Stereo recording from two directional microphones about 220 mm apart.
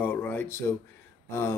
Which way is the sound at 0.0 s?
10° left (ahead or behind).